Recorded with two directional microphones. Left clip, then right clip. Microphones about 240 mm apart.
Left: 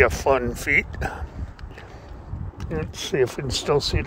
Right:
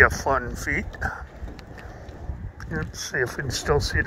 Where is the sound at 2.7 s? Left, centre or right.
Left.